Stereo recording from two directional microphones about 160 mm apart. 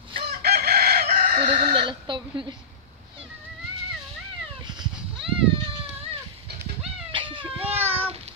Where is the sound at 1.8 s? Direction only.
30° right (ahead or behind).